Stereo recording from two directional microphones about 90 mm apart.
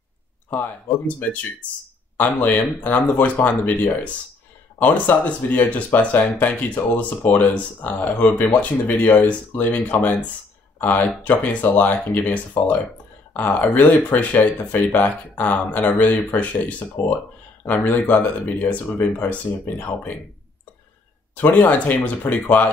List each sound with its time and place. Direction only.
0.5 s speech: 15° left (ahead or behind)
21.4 s speech: 20° left (ahead or behind)